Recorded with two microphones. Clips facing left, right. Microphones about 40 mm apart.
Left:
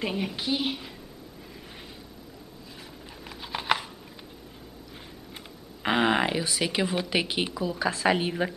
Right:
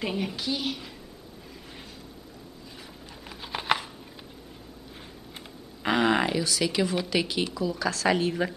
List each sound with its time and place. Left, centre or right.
0.0 s a woman's voice: centre
0.4 s speech: left
3.3 s a sound: centre
5.8 s speech: centre